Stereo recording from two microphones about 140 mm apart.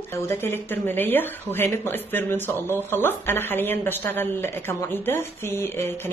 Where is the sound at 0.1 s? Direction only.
15° left (ahead or behind).